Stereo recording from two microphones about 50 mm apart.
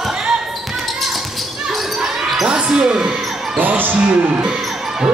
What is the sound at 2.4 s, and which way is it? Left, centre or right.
Basketball bounce, centre.